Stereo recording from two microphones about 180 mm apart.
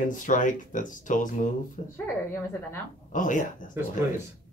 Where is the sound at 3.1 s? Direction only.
45° left (ahead or behind).